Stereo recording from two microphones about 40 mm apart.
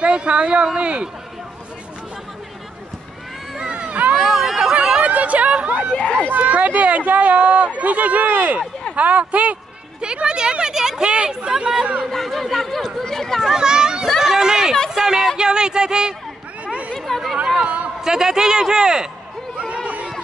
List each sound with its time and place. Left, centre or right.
0.0 s speech: right
3.5 s a sound: right
4.2 s chatter: centre
5.0 s chatter: right
5.9 s speech: left
6.4 s speech: right
9.9 s speech: right
11.1 s speech: right
11.5 s a man's voice: centre
12.1 s speech: centre
13.4 s a child's voice: centre
16.6 s chatter: right
16.9 s speech: centre
18.0 s a man's voice: centre